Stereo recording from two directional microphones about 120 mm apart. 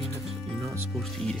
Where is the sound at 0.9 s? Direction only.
5° left (ahead or behind).